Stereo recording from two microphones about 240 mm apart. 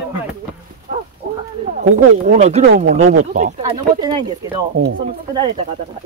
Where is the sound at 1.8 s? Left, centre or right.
Right.